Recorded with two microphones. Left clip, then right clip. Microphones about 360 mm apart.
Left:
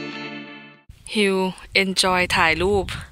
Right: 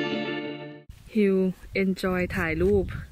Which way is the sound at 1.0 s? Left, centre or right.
Left.